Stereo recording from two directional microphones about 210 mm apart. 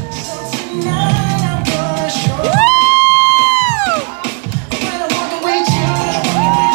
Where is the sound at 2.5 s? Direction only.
10° left (ahead or behind).